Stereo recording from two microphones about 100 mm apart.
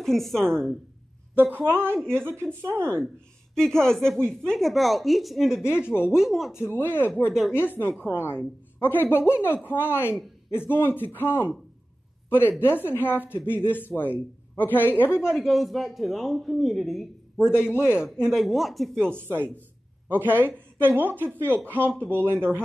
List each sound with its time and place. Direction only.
0.0 s speech: 5° left (ahead or behind)
1.3 s speech: 20° right (ahead or behind)
3.5 s speech: 5° left (ahead or behind)
5.6 s speech: 25° left (ahead or behind)
6.0 s speech: 5° right (ahead or behind)
6.5 s speech: 20° left (ahead or behind)
12.5 s speech: 20° left (ahead or behind)
15.3 s speech: centre (ahead or behind)
17.4 s speech: 25° left (ahead or behind)
17.9 s speech: 10° right (ahead or behind)
19.0 s speech: 20° right (ahead or behind)